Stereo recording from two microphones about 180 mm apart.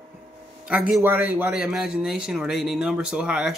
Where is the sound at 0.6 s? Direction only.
5° right (ahead or behind).